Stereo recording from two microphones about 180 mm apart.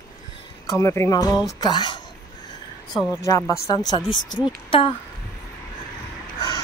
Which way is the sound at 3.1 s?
15° left (ahead or behind).